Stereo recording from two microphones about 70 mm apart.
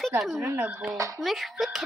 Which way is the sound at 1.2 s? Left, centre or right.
Centre.